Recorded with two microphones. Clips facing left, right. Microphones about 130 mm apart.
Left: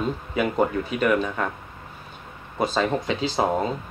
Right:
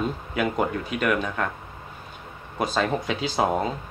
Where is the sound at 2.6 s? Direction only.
Centre (ahead or behind).